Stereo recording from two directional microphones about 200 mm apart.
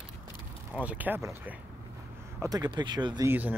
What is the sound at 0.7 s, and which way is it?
Speech, 10° right (ahead or behind).